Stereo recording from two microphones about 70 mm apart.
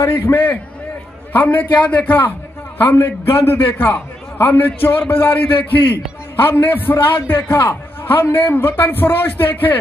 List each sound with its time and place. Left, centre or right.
0.2 s a man's voice: left